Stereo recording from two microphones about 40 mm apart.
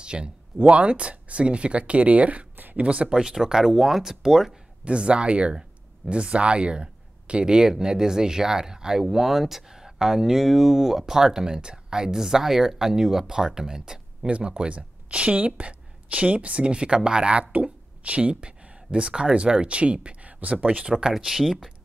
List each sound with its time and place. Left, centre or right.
0.0 s speech: right
3.2 s speech: centre
4.8 s speech: right
14.2 s speech: right
21.1 s speech: centre